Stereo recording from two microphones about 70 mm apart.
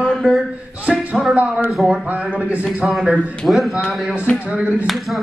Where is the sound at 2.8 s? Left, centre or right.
Centre.